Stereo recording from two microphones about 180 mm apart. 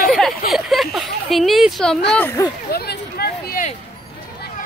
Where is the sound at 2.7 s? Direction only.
60° left (ahead or behind).